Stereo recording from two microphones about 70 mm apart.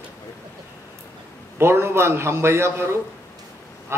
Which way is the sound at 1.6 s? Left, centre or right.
Right.